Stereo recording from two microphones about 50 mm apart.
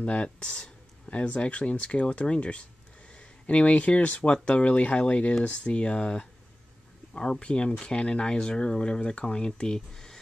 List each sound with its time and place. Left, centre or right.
0.0 s speech: left